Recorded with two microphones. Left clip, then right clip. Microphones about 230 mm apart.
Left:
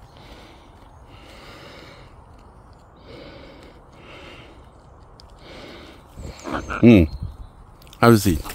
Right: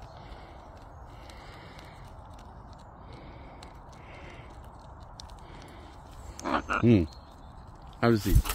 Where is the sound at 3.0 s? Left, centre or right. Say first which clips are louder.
Left 12 dB; left.